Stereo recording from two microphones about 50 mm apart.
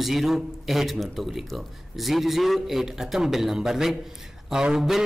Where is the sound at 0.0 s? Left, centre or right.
Centre.